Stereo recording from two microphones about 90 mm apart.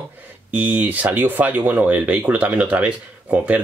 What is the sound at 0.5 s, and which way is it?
Speech, 20° right (ahead or behind).